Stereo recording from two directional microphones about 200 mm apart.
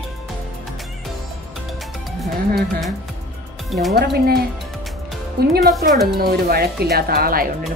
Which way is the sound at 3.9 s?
50° right (ahead or behind).